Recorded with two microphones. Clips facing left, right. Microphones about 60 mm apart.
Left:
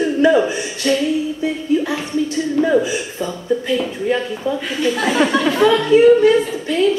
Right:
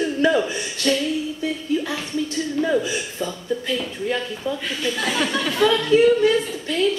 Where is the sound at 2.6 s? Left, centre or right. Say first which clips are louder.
Left 5 dB; left.